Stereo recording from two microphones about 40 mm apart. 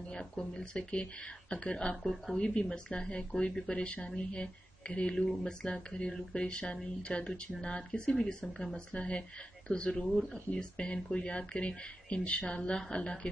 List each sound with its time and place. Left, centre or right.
0.1 s speech: left